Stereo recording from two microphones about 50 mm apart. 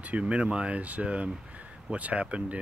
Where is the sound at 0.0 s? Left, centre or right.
Right.